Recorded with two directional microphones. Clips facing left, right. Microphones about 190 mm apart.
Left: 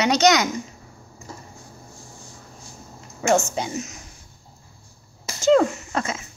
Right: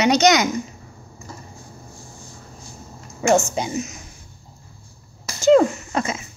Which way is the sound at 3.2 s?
15° right (ahead or behind).